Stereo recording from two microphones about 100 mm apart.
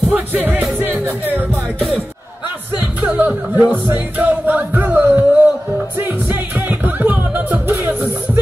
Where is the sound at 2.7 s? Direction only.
15° right (ahead or behind).